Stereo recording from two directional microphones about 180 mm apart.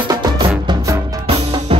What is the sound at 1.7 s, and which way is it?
Music, 30° right (ahead or behind).